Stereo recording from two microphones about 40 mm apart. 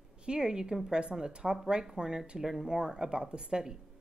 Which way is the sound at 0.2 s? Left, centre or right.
Right.